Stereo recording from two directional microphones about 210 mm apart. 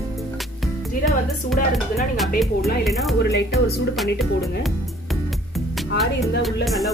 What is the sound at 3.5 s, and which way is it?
Music, centre (ahead or behind).